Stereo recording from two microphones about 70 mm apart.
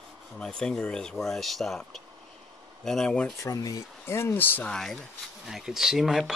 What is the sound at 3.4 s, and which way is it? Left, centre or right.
Speech, left.